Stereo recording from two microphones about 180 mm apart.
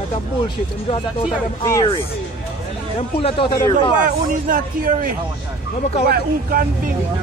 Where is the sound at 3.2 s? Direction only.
30° left (ahead or behind).